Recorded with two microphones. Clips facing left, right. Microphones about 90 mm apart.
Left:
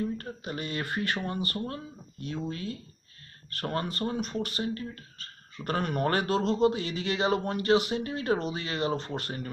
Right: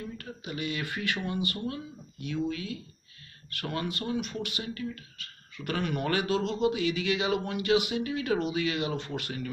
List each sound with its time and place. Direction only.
0.0 s speech: 40° left (ahead or behind)